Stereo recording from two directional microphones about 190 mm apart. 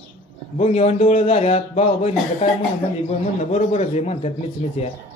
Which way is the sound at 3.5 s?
35° left (ahead or behind).